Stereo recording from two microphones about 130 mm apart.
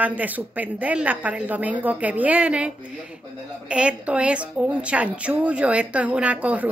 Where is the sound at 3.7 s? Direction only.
10° right (ahead or behind).